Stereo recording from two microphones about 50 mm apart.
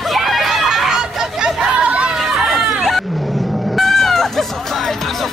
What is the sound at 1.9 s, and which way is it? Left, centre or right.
Chatter, centre.